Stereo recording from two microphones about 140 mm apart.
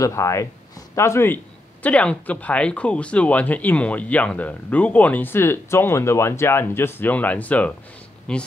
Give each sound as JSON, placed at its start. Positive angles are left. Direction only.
{"t": 0.0, "sound": "speech", "side_deg": 20}